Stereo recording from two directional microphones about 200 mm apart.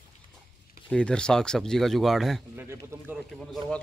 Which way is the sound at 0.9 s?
5° left (ahead or behind).